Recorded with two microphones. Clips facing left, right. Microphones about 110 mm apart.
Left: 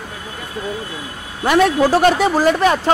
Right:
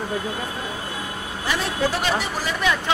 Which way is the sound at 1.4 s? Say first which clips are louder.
Left 11 dB; 55° left (ahead or behind).